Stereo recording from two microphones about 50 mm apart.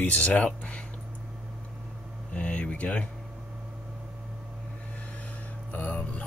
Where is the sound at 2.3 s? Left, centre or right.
Left.